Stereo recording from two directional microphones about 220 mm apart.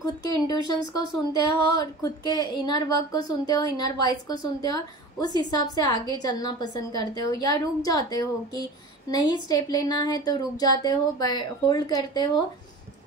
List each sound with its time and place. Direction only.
0.0 s a woman's voice: 15° left (ahead or behind)